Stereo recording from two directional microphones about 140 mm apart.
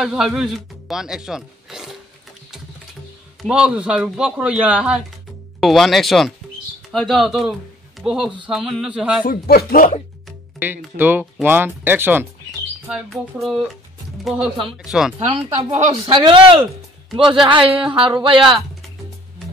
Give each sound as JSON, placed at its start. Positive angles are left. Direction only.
{"t": 0.0, "sound": "speech", "side_deg": 0}
{"t": 3.4, "sound": "speech", "side_deg": -5}
{"t": 9.2, "sound": "speech", "side_deg": 90}
{"t": 10.6, "sound": "speech", "side_deg": -15}
{"t": 12.8, "sound": "speech", "side_deg": 0}
{"t": 15.1, "sound": "speech", "side_deg": -50}